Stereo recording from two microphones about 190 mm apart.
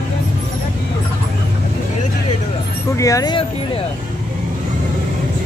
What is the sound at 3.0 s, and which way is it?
Speech, 15° left (ahead or behind).